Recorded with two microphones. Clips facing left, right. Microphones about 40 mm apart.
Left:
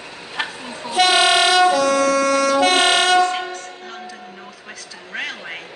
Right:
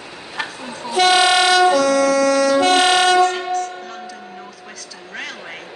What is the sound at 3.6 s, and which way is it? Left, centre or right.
Music, left.